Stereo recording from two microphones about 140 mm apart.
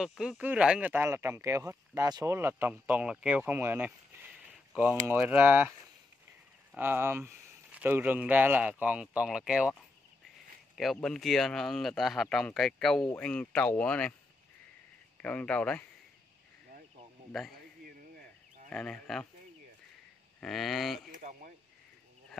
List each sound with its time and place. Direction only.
0.0 s speech: 5° right (ahead or behind)
6.8 s speech: 15° right (ahead or behind)
10.8 s speech: centre (ahead or behind)
15.2 s speech: 10° left (ahead or behind)
18.7 s speech: 5° left (ahead or behind)
20.3 s speech: centre (ahead or behind)
21.1 s a sound: 70° right (ahead or behind)